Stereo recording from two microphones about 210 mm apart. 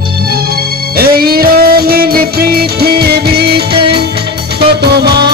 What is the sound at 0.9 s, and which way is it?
Music, 45° right (ahead or behind).